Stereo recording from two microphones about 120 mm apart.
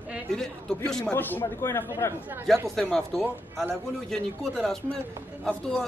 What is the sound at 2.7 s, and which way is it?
A man's voice, 5° left (ahead or behind).